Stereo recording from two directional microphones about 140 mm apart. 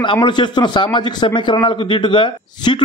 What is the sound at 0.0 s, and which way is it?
Speech, 35° left (ahead or behind).